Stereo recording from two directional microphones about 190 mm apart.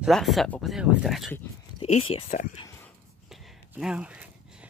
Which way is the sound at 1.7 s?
30° left (ahead or behind).